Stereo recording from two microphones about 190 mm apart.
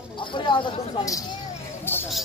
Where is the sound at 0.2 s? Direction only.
25° left (ahead or behind).